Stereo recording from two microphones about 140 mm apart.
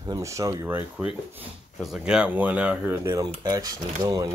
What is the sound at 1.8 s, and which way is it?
Speech, 5° right (ahead or behind).